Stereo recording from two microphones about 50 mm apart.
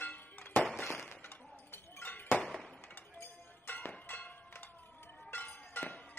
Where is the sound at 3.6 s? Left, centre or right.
Left.